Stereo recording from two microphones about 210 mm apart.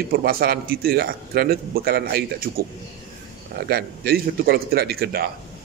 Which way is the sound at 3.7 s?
45° right (ahead or behind).